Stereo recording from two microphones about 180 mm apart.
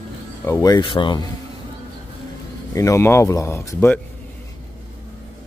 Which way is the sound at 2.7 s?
15° left (ahead or behind).